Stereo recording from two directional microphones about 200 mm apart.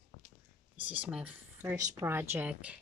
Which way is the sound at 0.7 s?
10° right (ahead or behind).